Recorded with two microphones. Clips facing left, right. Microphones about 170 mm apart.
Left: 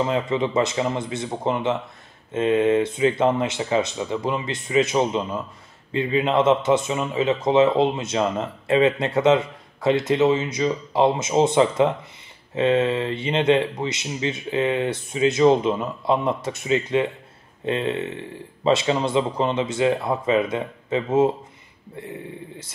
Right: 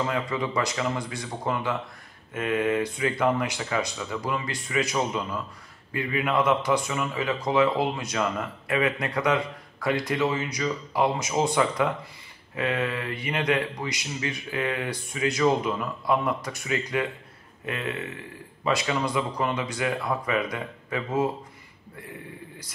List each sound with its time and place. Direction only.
0.0 s speech: 25° left (ahead or behind)